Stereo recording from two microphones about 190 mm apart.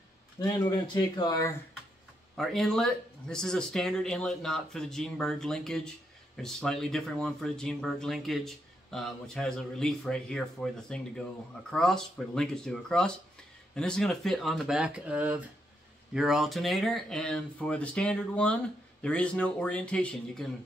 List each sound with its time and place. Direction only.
0.4 s speech: 20° left (ahead or behind)
2.3 s speech: centre (ahead or behind)